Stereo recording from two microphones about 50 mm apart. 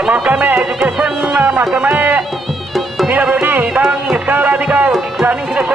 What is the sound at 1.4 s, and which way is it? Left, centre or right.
Music, right.